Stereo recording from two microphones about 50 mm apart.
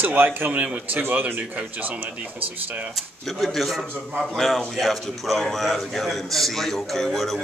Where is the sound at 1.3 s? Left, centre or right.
Right.